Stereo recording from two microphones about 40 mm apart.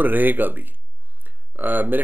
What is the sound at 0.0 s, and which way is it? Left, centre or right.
Speech, right.